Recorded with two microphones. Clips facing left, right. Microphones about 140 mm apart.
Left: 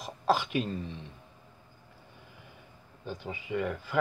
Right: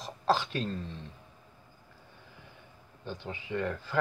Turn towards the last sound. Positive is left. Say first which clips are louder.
# left 1 dB
turn(degrees=10)  # may be behind; listen again after turning